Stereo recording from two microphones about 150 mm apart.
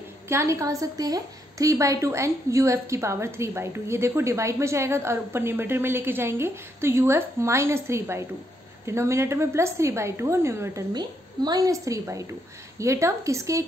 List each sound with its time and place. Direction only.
0.3 s a woman's voice: 20° right (ahead or behind)
10.9 s a woman's voice: 25° right (ahead or behind)